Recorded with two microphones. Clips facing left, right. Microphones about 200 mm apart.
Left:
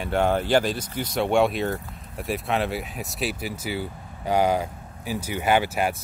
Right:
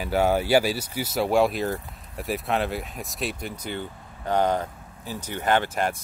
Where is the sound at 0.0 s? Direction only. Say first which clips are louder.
Even; 5° right (ahead or behind).